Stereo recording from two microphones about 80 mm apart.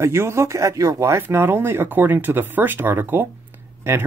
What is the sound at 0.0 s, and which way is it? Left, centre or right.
Speech, right.